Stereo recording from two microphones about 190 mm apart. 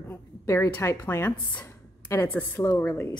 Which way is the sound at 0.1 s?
15° left (ahead or behind).